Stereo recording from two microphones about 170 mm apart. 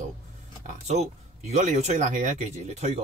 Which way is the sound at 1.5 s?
40° right (ahead or behind).